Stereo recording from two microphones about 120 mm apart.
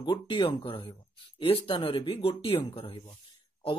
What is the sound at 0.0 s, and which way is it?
Speech, 40° left (ahead or behind).